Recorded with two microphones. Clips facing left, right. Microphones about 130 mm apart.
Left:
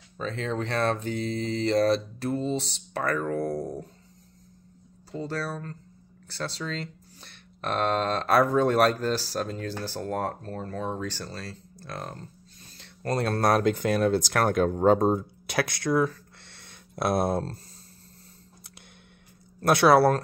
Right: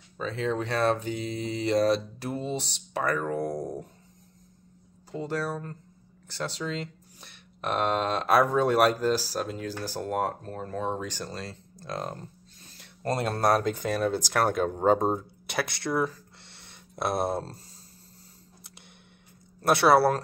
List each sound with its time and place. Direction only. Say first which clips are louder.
0.2 s speech: right 1 dB; 10° right (ahead or behind)
5.1 s speech: right 1 dB; 15° right (ahead or behind); by 17.6 s centre (ahead or behind)
19.6 s speech: left 2 dB; centre (ahead or behind)